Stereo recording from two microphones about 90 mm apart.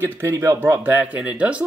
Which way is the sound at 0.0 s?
25° right (ahead or behind).